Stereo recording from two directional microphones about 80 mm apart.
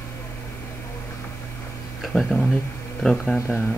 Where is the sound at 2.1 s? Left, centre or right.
Centre.